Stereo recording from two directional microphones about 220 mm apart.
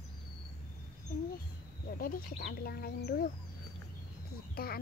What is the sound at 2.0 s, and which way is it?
A child's voice, 40° left (ahead or behind).